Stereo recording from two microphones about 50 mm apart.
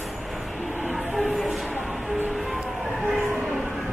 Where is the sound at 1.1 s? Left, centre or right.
Centre.